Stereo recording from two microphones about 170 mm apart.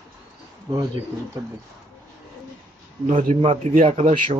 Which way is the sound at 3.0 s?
40° right (ahead or behind).